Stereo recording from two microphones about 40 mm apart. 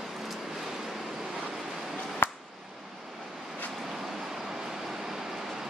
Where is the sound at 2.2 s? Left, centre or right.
Left.